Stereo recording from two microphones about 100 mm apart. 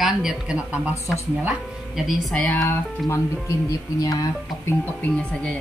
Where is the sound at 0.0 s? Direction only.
5° right (ahead or behind).